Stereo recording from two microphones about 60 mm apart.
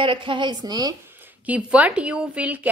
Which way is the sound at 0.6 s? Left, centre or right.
Right.